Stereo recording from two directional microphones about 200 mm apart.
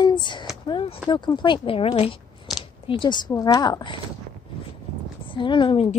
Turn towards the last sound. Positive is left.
turn(degrees=25)  # may be behind; listen again after turning